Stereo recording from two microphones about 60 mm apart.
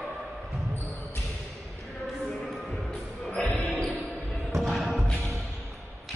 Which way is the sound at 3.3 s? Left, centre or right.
Centre.